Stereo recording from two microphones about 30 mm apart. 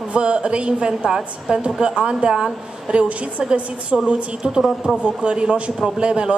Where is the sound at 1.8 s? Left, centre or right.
Right.